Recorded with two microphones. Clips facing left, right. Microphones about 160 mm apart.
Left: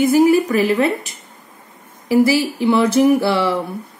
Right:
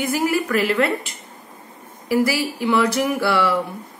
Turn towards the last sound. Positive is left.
turn(degrees=25)  # may be behind; listen again after turning